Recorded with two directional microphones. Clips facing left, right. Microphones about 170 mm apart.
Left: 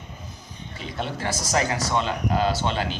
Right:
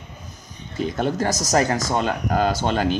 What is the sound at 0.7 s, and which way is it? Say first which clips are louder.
Speech: right 9 dB; 45° right (ahead or behind).